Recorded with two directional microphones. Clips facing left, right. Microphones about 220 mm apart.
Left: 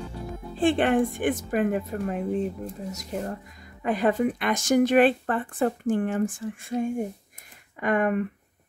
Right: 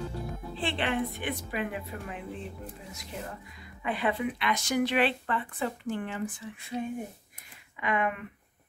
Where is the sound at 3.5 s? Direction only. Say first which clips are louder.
Left 4 dB; 45° left (ahead or behind).